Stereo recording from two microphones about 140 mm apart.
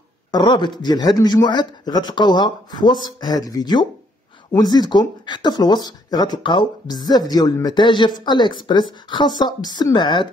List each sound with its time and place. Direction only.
0.3 s speech: 30° left (ahead or behind)